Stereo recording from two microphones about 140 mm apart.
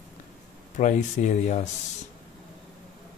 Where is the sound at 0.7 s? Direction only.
60° left (ahead or behind).